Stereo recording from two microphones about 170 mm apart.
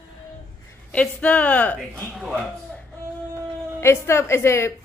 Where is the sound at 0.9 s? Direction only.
5° left (ahead or behind).